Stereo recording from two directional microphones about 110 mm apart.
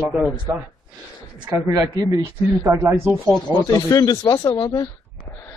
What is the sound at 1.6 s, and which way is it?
Speech, 25° right (ahead or behind).